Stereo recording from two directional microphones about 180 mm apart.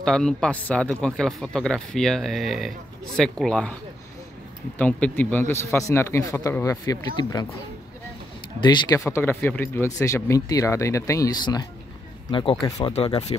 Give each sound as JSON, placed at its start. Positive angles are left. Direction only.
{"t": 0.0, "sound": "speech", "side_deg": 5}
{"t": 4.7, "sound": "speech", "side_deg": 10}
{"t": 8.6, "sound": "speech", "side_deg": 20}